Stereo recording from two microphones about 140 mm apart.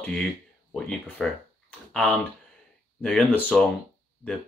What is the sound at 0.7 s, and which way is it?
Speech, 5° left (ahead or behind).